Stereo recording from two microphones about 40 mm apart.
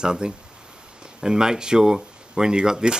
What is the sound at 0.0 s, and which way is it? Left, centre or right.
Speech, right.